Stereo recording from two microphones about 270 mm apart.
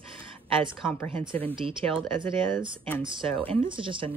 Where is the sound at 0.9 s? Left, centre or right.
Centre.